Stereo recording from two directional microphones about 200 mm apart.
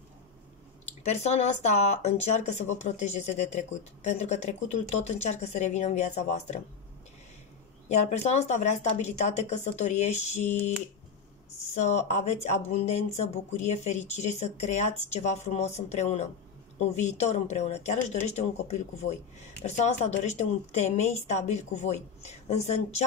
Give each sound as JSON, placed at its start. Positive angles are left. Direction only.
{"t": 1.0, "sound": "speech", "side_deg": 35}
{"t": 7.9, "sound": "speech", "side_deg": 35}
{"t": 11.8, "sound": "speech", "side_deg": 35}